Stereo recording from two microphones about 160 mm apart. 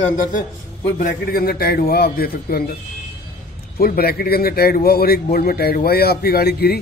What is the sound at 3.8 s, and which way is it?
Speech, 70° left (ahead or behind).